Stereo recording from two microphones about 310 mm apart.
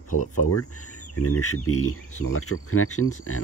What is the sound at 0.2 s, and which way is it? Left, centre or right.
Speech, left.